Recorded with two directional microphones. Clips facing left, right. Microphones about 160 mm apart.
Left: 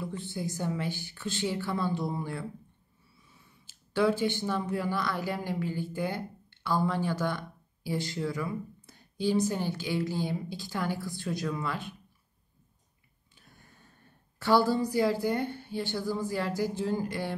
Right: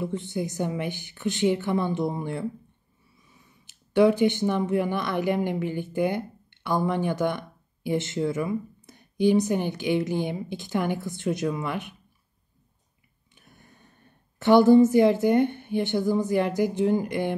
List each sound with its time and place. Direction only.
0.0 s a woman's voice: 20° right (ahead or behind)
13.3 s a sound: 20° right (ahead or behind)
14.4 s a woman's voice: 20° right (ahead or behind)